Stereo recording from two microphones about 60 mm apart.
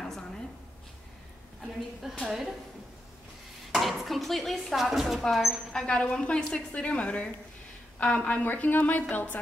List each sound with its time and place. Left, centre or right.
2.0 s a woman's voice: centre
3.7 s chopping: centre
5.3 s a woman's voice: centre
5.7 s speech: centre
8.5 s speech: left